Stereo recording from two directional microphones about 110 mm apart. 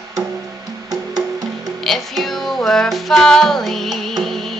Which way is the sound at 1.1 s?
35° right (ahead or behind).